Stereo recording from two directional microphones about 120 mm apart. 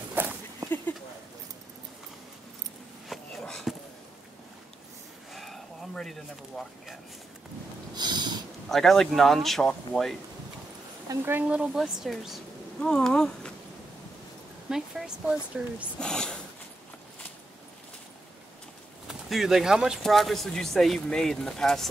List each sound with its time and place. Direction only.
0.1 s dog: 15° right (ahead or behind)
3.1 s a sound: centre (ahead or behind)
5.3 s a sound: centre (ahead or behind)
7.9 s snort: 35° right (ahead or behind)
8.6 s speech: centre (ahead or behind)
11.2 s speech: 15° right (ahead or behind); by 13.5 s 5° left (ahead or behind)
14.7 s speech: 5° right (ahead or behind)
16.0 s speech: 5° left (ahead or behind)
19.0 s speech: centre (ahead or behind)